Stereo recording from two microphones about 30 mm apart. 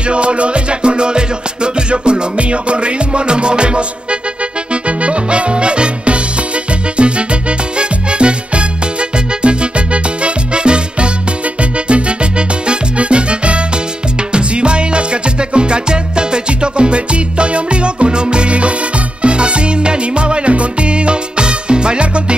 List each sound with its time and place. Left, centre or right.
0.0 s music: right